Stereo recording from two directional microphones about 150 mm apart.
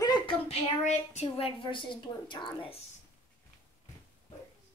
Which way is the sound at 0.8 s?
50° left (ahead or behind).